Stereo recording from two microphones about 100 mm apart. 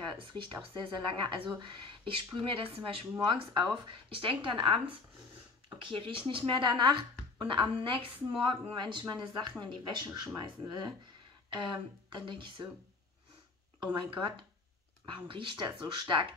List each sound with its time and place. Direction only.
0.0 s a woman's voice: 55° right (ahead or behind)
3.2 s speech: 50° right (ahead or behind)
4.1 s a woman's voice: 60° right (ahead or behind)
5.9 s a woman's voice: 55° right (ahead or behind)
11.5 s a woman's voice: 55° right (ahead or behind)
13.9 s a woman's voice: 55° right (ahead or behind)